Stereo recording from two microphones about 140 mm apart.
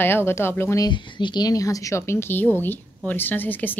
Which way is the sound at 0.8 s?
35° left (ahead or behind).